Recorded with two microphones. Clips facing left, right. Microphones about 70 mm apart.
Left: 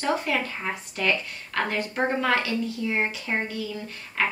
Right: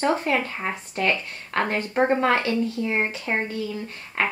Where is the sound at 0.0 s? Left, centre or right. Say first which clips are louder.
Right 3 dB; right.